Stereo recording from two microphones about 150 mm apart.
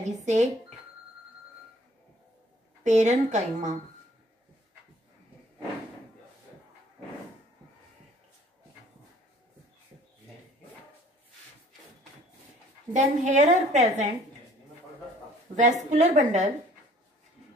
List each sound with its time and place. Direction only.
0.0 s speech: 50° right (ahead or behind)
2.8 s a woman's voice: 50° right (ahead or behind)
12.9 s a woman's voice: 50° right (ahead or behind)
15.5 s a woman's voice: 55° right (ahead or behind)